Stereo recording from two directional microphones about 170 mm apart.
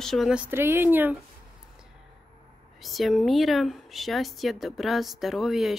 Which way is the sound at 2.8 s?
Centre (ahead or behind).